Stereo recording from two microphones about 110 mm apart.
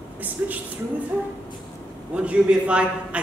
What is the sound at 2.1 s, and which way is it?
Speech, 10° right (ahead or behind).